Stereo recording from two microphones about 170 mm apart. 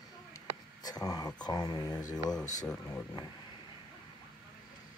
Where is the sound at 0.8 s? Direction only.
25° left (ahead or behind).